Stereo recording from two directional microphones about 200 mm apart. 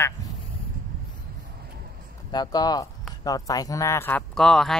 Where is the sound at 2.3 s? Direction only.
20° left (ahead or behind).